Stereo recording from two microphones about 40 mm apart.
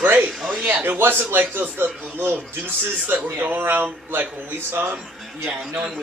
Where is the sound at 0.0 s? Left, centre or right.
Right.